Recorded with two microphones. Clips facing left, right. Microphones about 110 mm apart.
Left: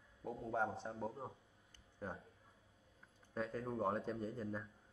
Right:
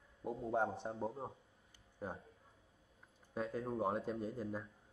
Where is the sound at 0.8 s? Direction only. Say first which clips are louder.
Right 3 dB; 25° right (ahead or behind).